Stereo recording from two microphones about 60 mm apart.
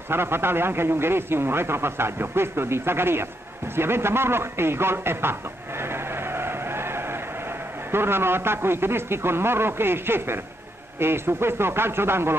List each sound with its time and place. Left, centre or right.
0.1 s a man's voice: right